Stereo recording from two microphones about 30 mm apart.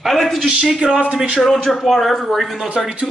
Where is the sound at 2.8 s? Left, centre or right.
Centre.